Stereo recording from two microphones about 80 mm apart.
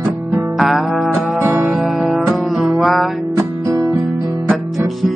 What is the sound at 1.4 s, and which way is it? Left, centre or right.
Music, right.